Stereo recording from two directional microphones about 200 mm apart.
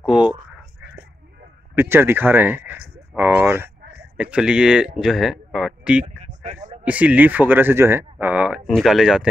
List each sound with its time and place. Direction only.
0.0 s speech: 5° right (ahead or behind)
1.8 s speech: 10° right (ahead or behind)
3.2 s a sound: 10° right (ahead or behind)
4.2 s speech: 5° right (ahead or behind)
6.0 s a sound: 35° right (ahead or behind)
6.8 s speech: 5° right (ahead or behind)